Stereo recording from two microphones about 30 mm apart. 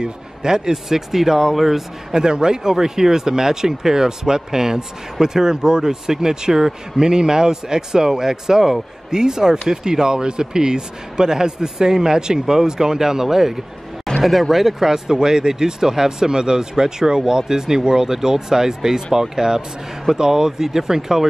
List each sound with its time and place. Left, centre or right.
0.0 s a man's voice: right
0.8 s speech: centre
2.1 s speech: right
14.2 s speech: centre